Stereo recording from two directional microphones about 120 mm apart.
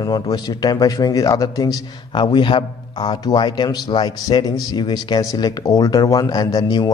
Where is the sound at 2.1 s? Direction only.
40° left (ahead or behind).